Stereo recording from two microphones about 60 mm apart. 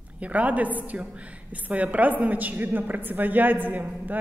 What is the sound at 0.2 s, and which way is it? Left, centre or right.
A woman's voice, right.